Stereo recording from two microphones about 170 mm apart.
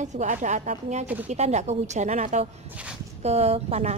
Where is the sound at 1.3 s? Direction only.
40° right (ahead or behind).